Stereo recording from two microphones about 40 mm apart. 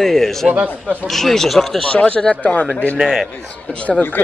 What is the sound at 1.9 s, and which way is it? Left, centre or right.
Speech, left.